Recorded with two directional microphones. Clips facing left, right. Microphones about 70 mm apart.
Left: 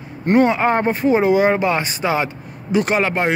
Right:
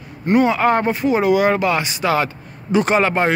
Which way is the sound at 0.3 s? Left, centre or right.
Left.